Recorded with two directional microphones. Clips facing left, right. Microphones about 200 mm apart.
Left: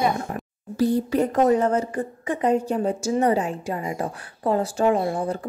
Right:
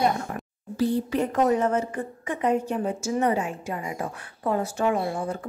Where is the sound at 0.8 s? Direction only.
40° left (ahead or behind).